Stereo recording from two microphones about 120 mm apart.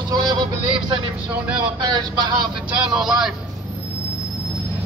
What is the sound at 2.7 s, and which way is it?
Speech, 5° right (ahead or behind).